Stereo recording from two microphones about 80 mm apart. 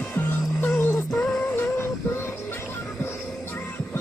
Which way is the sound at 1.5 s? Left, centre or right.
Left.